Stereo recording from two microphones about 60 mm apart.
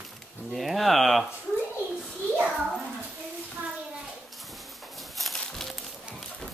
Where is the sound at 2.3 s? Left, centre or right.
Centre.